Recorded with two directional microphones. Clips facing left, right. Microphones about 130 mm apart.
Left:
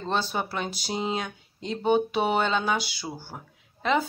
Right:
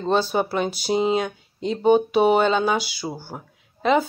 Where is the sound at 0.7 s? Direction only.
55° right (ahead or behind).